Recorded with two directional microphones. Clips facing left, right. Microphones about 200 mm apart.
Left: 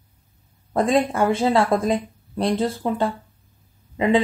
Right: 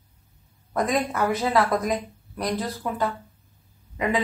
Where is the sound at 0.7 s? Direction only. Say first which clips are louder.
Left 5 dB; 30° left (ahead or behind).